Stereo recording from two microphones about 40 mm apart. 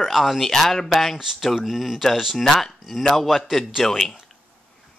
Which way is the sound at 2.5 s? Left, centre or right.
Centre.